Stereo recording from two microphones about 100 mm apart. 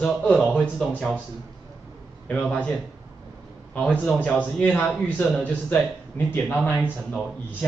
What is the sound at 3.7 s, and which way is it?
A man's voice, 15° left (ahead or behind).